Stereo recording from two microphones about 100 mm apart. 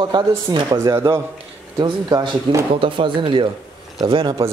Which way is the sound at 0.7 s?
30° right (ahead or behind).